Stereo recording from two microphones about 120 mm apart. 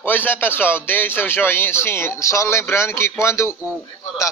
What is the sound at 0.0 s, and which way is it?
A man's voice, 15° left (ahead or behind).